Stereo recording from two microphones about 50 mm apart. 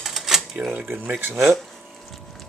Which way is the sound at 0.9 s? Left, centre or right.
Right.